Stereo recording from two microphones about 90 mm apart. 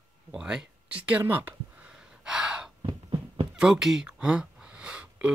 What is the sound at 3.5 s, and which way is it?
Speech, 5° right (ahead or behind).